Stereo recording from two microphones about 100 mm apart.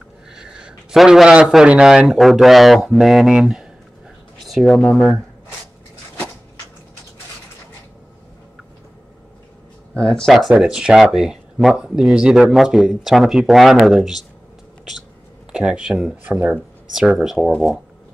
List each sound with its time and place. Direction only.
0.3 s a man's voice: 10° right (ahead or behind)
9.9 s speech: 5° left (ahead or behind)
15.5 s speech: 10° right (ahead or behind)